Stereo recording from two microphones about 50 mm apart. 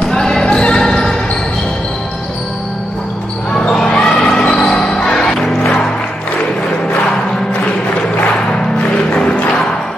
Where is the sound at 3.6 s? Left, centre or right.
Centre.